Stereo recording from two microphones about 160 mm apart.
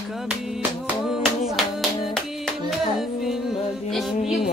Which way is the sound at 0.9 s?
Centre (ahead or behind).